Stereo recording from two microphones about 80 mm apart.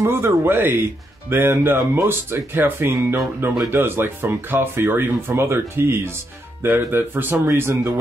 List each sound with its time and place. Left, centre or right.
0.0 s speech: right